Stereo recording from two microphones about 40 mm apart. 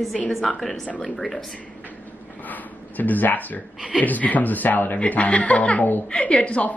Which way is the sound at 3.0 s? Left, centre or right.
Left.